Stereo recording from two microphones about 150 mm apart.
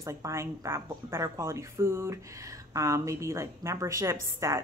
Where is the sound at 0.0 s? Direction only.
20° right (ahead or behind).